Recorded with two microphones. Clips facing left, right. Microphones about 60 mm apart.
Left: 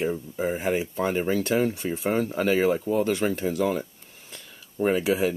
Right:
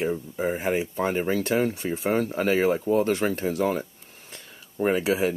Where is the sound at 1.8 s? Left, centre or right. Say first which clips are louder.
Right 1 dB; centre.